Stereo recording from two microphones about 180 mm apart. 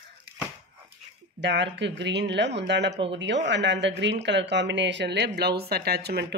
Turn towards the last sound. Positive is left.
turn(degrees=-65)  # may be behind; listen again after turning